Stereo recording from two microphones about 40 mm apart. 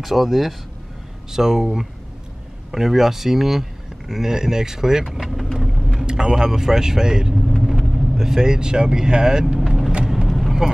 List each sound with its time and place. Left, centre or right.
0.0 s speech: centre
5.1 s vehicle: centre
5.5 s a sound: centre
5.9 s speech: centre
9.6 s vehicle: centre